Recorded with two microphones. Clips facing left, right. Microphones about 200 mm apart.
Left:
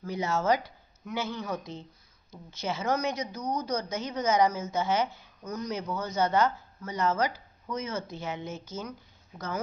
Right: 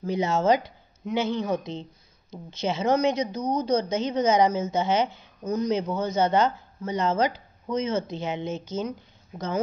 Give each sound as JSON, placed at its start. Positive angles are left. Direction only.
{"t": 0.0, "sound": "a woman's voice", "side_deg": -20}